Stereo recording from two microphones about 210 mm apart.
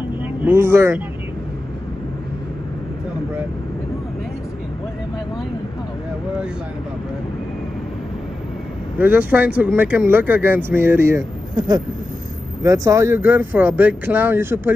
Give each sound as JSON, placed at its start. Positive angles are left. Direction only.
{"t": 0.5, "sound": "speech", "side_deg": -10}
{"t": 8.9, "sound": "speech", "side_deg": -10}